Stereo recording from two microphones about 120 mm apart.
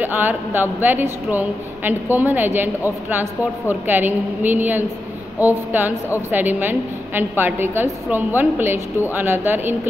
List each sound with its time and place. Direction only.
0.0 s a woman's voice: 15° right (ahead or behind)